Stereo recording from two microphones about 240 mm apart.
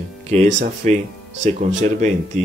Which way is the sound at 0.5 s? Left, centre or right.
Right.